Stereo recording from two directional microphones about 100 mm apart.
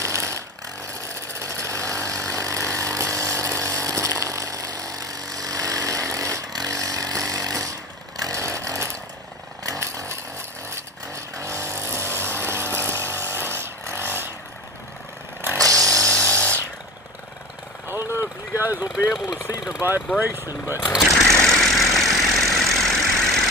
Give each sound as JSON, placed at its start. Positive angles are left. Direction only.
{"t": 0.0, "sound": "a sound", "side_deg": -30}
{"t": 1.4, "sound": "vehicle", "side_deg": -30}
{"t": 2.3, "sound": "chainsaw", "side_deg": -30}
{"t": 11.3, "sound": "vehicle", "side_deg": -30}
{"t": 15.6, "sound": "tools", "side_deg": 5}
{"t": 17.8, "sound": "vehicle", "side_deg": -25}
{"t": 19.8, "sound": "speech", "side_deg": -20}
{"t": 21.3, "sound": "vehicle", "side_deg": 5}